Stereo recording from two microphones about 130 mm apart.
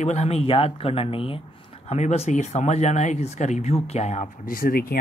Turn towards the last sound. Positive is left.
turn(degrees=90)